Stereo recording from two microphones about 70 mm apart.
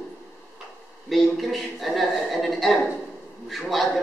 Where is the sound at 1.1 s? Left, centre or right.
Centre.